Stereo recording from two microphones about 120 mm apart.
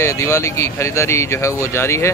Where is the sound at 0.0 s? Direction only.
20° left (ahead or behind).